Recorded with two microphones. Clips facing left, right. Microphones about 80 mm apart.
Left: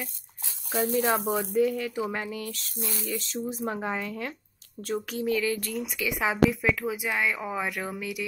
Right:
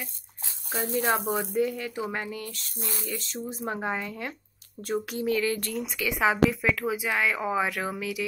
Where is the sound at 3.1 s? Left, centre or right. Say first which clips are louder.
Left 4 dB; centre.